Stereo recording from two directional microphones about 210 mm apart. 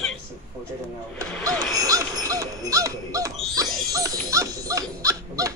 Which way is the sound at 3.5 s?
15° right (ahead or behind).